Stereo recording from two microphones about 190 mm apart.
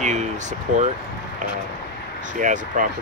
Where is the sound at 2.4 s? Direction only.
45° right (ahead or behind).